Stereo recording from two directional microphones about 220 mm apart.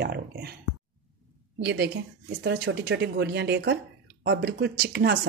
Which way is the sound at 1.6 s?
50° right (ahead or behind).